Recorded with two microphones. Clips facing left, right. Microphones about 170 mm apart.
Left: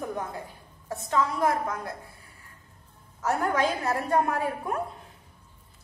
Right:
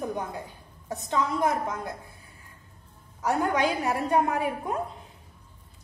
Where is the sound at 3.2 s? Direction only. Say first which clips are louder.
Right 1 dB; 15° right (ahead or behind).